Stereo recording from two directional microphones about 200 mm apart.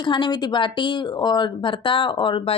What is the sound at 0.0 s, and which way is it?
A woman's voice, 25° left (ahead or behind).